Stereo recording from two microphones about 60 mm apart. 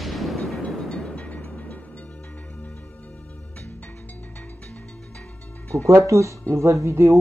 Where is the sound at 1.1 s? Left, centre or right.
Left.